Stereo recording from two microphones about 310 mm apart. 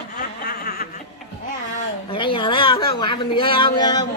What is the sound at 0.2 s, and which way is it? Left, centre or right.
Snicker, left.